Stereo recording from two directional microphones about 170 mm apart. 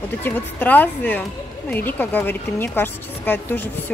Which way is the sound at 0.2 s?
10° left (ahead or behind).